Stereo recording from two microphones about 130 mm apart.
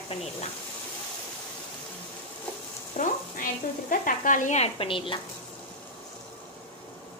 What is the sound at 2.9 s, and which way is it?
Frying, 55° left (ahead or behind).